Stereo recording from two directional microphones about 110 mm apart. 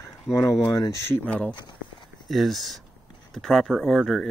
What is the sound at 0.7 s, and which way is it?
Speech, 30° left (ahead or behind).